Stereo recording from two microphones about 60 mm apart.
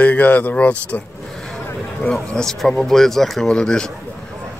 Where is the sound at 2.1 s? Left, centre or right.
Centre.